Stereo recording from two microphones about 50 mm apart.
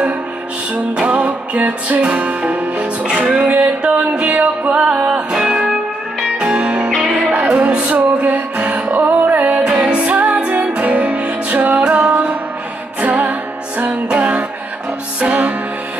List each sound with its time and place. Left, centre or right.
1.0 s music: right